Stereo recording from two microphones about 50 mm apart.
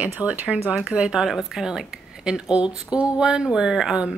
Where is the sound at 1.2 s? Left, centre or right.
Centre.